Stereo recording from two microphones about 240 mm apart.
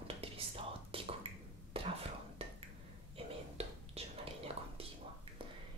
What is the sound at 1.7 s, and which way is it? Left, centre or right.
Whispering, right.